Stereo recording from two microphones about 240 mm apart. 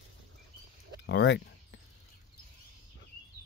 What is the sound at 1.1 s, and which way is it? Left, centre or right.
Speech, left.